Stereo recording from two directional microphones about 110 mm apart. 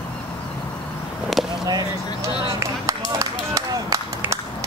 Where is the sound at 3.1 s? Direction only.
30° right (ahead or behind).